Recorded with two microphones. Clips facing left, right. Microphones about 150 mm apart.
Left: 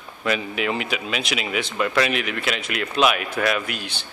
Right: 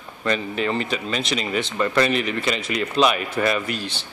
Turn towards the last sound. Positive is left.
turn(degrees=0)  # may be behind; listen again after turning